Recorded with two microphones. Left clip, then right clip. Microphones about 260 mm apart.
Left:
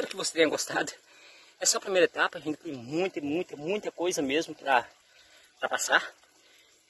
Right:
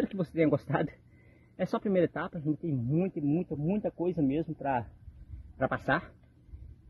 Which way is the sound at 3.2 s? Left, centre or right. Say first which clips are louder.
Even; left.